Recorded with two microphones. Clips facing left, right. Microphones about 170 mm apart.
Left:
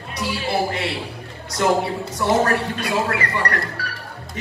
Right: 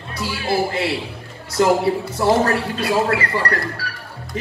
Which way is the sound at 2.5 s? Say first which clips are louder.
Right 2 dB; 30° right (ahead or behind).